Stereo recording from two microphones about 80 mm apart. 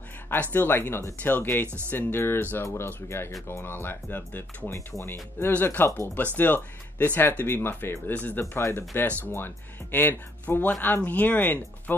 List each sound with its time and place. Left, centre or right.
0.3 s speech: left
5.5 s speech: left